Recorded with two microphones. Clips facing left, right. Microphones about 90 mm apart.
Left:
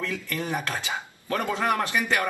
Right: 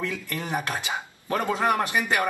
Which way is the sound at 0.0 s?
20° right (ahead or behind).